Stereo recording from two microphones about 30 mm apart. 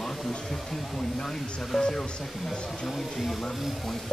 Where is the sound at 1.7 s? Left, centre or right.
Centre.